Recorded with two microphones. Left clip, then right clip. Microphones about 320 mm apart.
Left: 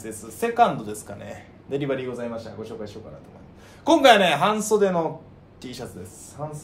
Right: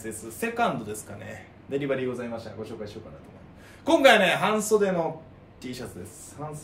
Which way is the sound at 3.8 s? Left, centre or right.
Centre.